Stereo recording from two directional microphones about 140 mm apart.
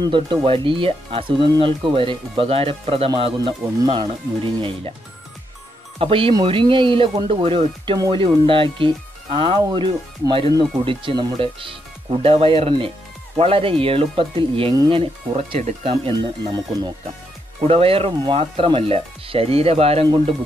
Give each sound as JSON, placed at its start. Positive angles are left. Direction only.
{"t": 0.0, "sound": "speech", "side_deg": -35}
{"t": 3.8, "sound": "speech", "side_deg": -30}
{"t": 5.9, "sound": "speech", "side_deg": -40}
{"t": 17.6, "sound": "speech", "side_deg": -40}